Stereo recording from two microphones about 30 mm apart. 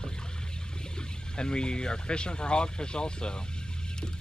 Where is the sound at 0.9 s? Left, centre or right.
Left.